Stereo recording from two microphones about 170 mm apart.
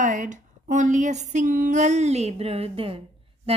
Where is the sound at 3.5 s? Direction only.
35° right (ahead or behind).